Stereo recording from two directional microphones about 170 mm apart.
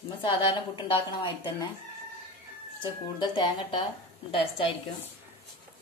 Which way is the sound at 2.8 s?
25° left (ahead or behind).